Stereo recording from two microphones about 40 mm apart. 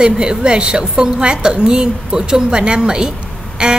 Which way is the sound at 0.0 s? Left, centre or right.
Right.